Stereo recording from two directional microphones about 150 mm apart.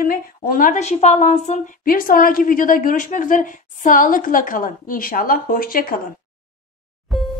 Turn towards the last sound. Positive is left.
turn(degrees=0)  # may be behind; listen again after turning